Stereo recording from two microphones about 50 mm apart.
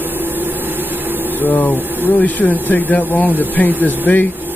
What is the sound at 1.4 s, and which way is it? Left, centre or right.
A man's voice, left.